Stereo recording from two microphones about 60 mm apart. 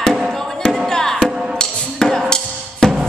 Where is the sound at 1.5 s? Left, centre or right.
Centre.